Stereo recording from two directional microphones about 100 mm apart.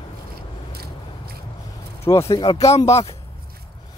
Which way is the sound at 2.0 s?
25° left (ahead or behind).